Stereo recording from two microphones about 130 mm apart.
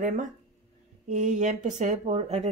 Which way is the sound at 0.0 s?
80° right.